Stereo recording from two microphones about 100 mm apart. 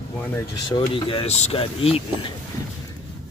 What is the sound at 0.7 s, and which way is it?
Speech, 65° left (ahead or behind).